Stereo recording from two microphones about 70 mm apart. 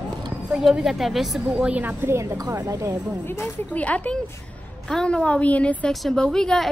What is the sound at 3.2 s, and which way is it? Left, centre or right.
A woman's voice, left.